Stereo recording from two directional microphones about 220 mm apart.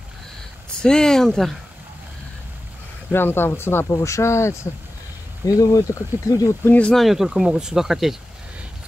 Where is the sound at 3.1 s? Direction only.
10° left (ahead or behind).